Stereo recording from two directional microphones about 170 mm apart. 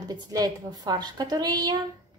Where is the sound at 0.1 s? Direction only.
25° right (ahead or behind).